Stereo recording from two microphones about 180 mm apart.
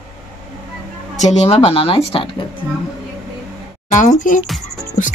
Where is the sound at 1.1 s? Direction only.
40° left (ahead or behind).